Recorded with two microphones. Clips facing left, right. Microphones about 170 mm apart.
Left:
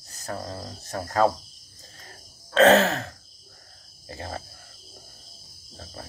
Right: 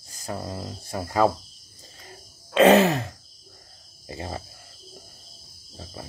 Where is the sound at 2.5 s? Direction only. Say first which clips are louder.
Right 1 dB; 15° right (ahead or behind).